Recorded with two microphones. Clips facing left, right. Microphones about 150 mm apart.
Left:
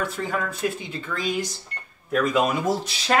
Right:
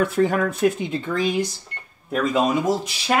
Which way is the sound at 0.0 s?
60° right (ahead or behind).